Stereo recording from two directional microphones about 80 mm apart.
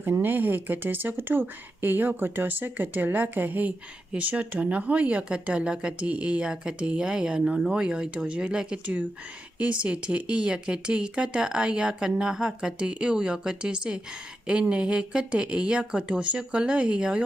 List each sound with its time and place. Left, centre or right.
0.0 s speech: right